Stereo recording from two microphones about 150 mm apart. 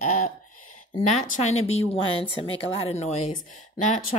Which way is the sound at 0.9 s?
50° left (ahead or behind).